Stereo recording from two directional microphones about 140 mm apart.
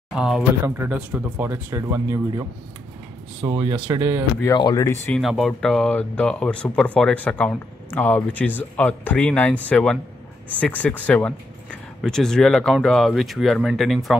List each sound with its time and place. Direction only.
0.1 s speech: 5° right (ahead or behind)
0.7 s speech: 15° right (ahead or behind)
3.4 s speech: 30° right (ahead or behind)
4.6 s speech: 25° left (ahead or behind)
5.1 s speech: centre (ahead or behind)